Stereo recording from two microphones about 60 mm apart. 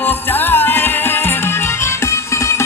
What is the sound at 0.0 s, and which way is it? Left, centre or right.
Music, left.